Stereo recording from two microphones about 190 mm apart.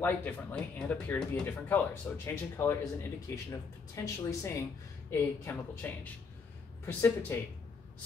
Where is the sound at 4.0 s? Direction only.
15° left (ahead or behind).